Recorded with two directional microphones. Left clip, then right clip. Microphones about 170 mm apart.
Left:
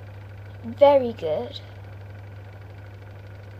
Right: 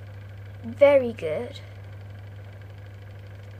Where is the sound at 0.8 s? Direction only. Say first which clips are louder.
Left 1 dB; 20° right (ahead or behind).